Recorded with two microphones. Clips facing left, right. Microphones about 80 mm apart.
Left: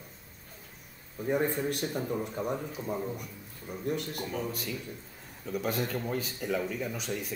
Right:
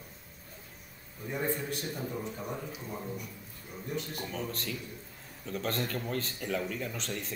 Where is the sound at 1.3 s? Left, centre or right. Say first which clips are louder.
Left 5 dB; left.